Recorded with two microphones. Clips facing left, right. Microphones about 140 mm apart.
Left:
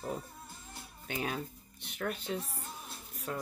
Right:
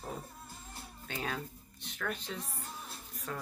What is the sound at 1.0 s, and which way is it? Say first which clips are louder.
Speech: left 2 dB; 15° left (ahead or behind).